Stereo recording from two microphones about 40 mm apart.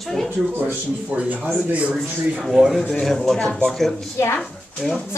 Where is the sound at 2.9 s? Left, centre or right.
Centre.